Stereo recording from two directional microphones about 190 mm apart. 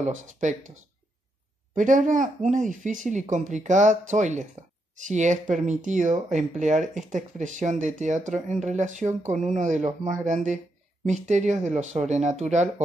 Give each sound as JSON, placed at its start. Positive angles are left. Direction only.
{"t": 0.0, "sound": "speech", "side_deg": -40}
{"t": 1.8, "sound": "speech", "side_deg": -40}